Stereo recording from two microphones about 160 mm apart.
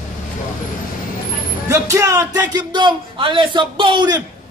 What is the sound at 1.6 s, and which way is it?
A man's voice, 20° right (ahead or behind).